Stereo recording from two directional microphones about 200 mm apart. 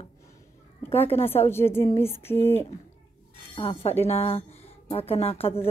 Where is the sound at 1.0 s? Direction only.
30° left (ahead or behind).